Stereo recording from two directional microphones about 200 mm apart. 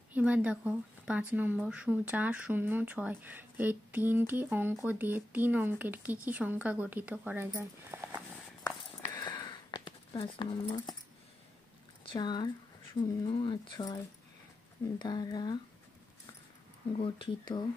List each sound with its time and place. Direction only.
0.1 s speech: 5° right (ahead or behind)
9.1 s a sound: 20° left (ahead or behind)
12.0 s speech: 25° left (ahead or behind)
17.0 s speech: 25° left (ahead or behind)